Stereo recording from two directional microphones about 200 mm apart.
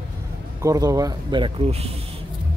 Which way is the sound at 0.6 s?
15° right (ahead or behind).